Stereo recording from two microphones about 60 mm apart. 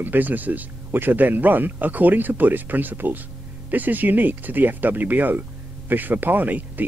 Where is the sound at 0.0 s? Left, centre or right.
Right.